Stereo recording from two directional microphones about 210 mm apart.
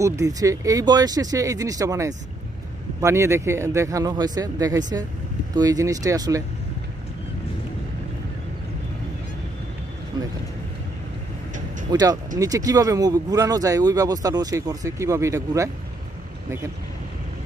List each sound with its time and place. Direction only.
0.0 s speech: 15° right (ahead or behind)
10.1 s speech: 20° right (ahead or behind)
11.9 s speech: 20° right (ahead or behind)